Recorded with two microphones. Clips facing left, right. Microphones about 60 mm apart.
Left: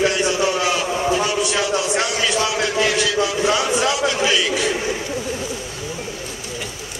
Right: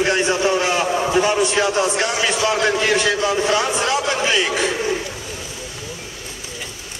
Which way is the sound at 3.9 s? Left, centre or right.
Right.